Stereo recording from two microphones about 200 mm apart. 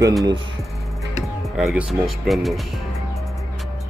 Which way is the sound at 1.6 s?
Centre (ahead or behind).